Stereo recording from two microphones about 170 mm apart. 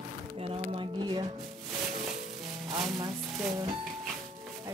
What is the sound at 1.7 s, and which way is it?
Music, 5° right (ahead or behind).